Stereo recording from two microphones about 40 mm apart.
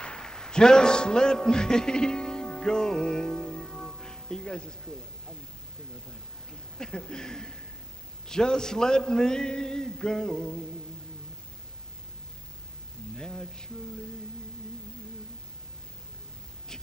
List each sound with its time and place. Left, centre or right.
0.0 s a sound: left
0.3 s a man's voice: centre
3.3 s music: centre
6.8 s a man's voice: centre
13.1 s a man's voice: centre